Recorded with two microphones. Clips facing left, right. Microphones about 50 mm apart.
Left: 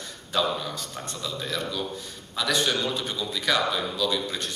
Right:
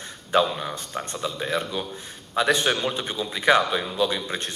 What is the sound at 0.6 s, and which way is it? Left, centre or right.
A man's voice, right.